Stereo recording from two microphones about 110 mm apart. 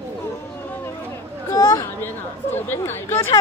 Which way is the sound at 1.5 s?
30° left (ahead or behind).